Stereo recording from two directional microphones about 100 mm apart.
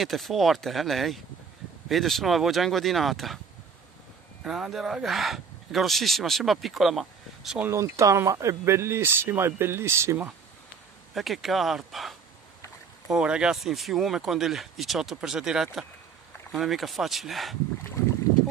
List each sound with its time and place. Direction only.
0.0 s speech: centre (ahead or behind)
4.5 s speech: 5° right (ahead or behind)
7.7 s speech: 30° right (ahead or behind)
11.1 s speech: centre (ahead or behind)